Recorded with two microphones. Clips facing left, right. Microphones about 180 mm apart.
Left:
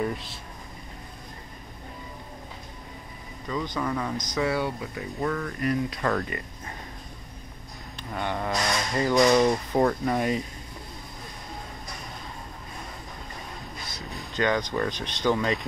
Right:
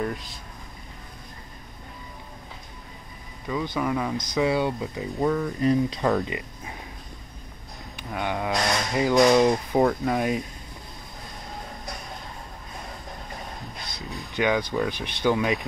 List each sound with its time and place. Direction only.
3.4 s speech: 10° right (ahead or behind)
8.1 s speech: 5° right (ahead or behind)
14.3 s speech: 10° right (ahead or behind)